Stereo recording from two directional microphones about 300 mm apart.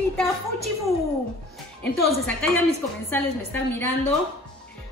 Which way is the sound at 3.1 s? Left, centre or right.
Centre.